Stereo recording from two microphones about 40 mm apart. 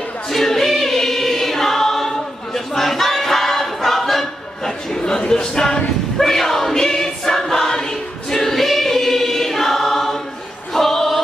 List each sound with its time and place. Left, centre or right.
0.3 s choir: centre
5.0 s a sound: centre
6.1 s choir: centre